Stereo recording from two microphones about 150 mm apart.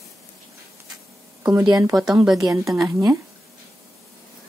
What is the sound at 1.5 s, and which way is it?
Speech, 25° right (ahead or behind).